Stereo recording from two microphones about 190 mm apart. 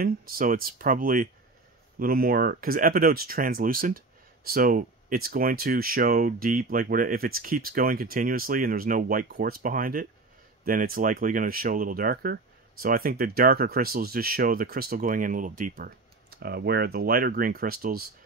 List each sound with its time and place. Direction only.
0.0 s speech: 50° right (ahead or behind)